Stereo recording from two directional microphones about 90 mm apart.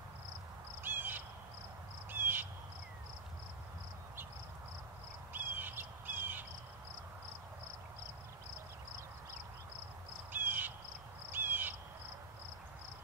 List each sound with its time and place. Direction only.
0.8 s a sound: 20° right (ahead or behind)
2.0 s crow: 20° right (ahead or behind)
5.3 s crow: 20° right (ahead or behind)
10.3 s crow: 20° right (ahead or behind)